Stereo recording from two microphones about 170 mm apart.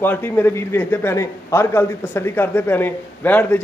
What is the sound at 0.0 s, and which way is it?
A man's voice, 10° left (ahead or behind).